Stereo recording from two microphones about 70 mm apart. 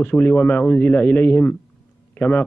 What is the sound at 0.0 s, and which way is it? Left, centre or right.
A man's voice, left.